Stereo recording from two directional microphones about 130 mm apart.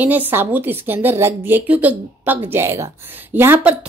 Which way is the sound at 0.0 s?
15° right (ahead or behind).